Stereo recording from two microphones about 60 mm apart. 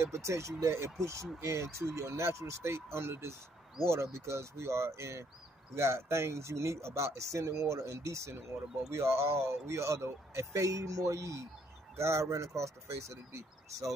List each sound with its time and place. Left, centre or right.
0.0 s a man's voice: right